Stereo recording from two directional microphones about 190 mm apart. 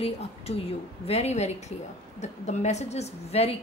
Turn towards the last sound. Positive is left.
turn(degrees=35)  # may be behind; listen again after turning